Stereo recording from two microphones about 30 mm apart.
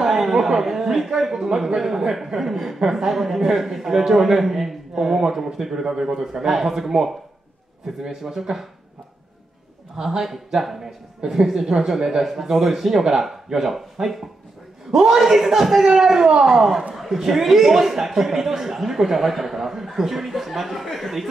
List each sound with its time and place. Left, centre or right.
0.1 s a sound: centre
0.6 s a man's voice: centre
10.0 s a man's voice: centre
14.9 s a man's voice: centre